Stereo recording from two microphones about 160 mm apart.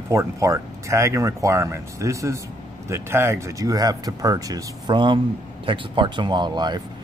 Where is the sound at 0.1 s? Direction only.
20° right (ahead or behind).